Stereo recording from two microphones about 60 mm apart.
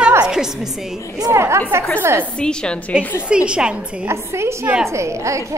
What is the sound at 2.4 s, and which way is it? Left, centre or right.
Speech, centre.